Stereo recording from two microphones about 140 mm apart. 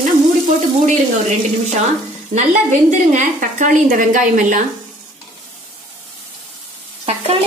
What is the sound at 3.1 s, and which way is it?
A woman's voice, 65° right (ahead or behind).